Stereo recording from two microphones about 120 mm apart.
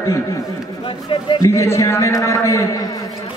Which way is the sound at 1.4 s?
25° left (ahead or behind).